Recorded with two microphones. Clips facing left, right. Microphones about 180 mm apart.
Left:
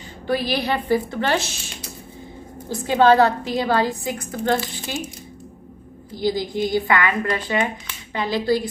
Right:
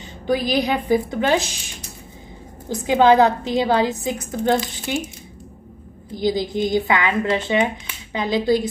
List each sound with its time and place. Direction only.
0.3 s a woman's voice: 15° right (ahead or behind)
2.7 s a woman's voice: 15° right (ahead or behind)
6.1 s a woman's voice: 20° right (ahead or behind)